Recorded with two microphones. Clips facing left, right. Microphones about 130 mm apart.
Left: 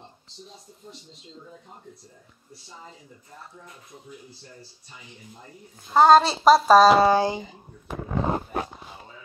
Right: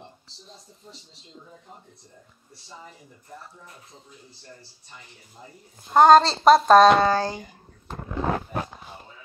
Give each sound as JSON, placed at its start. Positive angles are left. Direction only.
{"t": 4.9, "sound": "speech", "side_deg": 15}
{"t": 5.9, "sound": "a woman's voice", "side_deg": 0}
{"t": 7.1, "sound": "speech", "side_deg": 15}
{"t": 8.2, "sound": "roaring cats", "side_deg": 25}